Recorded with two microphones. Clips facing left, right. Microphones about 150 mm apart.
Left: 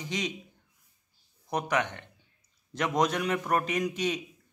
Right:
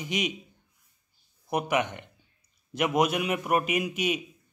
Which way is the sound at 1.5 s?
10° right (ahead or behind).